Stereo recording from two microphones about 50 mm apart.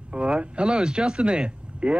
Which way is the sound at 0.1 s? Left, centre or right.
Right.